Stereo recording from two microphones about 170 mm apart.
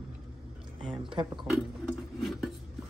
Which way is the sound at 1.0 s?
30° right (ahead or behind).